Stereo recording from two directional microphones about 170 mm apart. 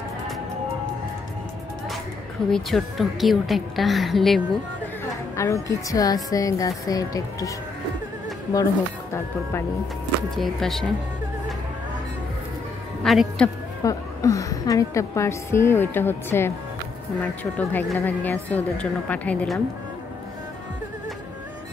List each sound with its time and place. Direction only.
2.5 s a woman's voice: centre (ahead or behind)
5.3 s speech: 15° left (ahead or behind)
9.1 s a woman's voice: 15° left (ahead or behind)
10.3 s a woman's voice: centre (ahead or behind)
13.0 s speech: centre (ahead or behind)
13.8 s a woman's voice: 20° left (ahead or behind)